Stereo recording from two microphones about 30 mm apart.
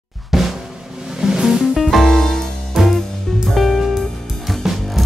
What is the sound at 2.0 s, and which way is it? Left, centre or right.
Music, centre.